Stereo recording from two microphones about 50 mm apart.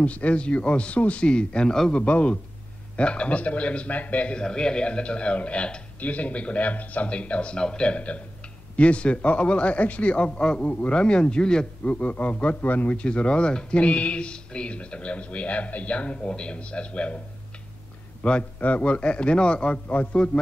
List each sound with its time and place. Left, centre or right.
0.0 s speech: left
4.4 s speech: centre
18.2 s speech: left